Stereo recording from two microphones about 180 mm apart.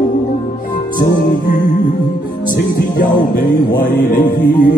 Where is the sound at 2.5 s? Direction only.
55° left (ahead or behind).